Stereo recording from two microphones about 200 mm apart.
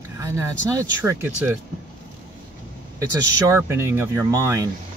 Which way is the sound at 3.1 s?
15° right (ahead or behind).